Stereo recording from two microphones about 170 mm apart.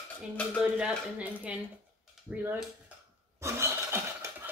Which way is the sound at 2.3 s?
5° right (ahead or behind).